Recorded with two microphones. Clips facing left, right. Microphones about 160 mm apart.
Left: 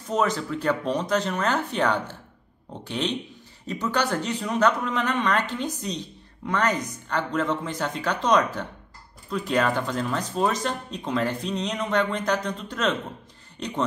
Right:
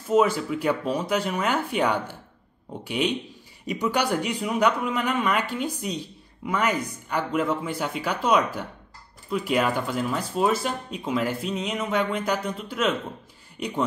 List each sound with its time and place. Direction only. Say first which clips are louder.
0.1 s speech: right 4 dB; 10° right (ahead or behind)